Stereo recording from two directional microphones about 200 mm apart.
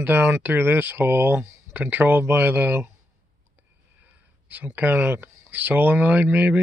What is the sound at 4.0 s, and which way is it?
Speech, 10° right (ahead or behind).